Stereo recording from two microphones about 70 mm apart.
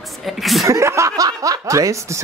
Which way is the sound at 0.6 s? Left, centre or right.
Right.